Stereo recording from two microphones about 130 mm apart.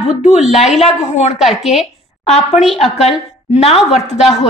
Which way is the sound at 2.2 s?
55° left (ahead or behind).